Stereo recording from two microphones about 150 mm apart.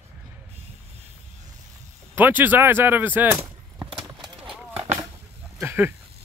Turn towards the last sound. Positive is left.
turn(degrees=-15)  # may be behind; listen again after turning